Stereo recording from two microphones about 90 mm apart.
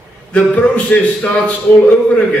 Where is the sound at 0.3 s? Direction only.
15° left (ahead or behind).